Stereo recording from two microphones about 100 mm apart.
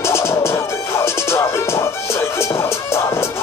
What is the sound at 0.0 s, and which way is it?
Music, 25° left (ahead or behind).